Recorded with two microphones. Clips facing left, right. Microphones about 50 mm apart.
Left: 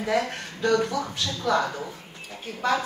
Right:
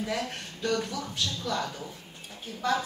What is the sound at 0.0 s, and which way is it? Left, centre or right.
A woman's voice, left.